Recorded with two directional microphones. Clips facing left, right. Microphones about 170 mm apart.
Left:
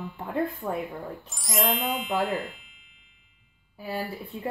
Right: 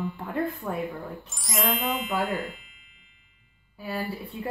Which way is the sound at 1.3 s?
Centre (ahead or behind).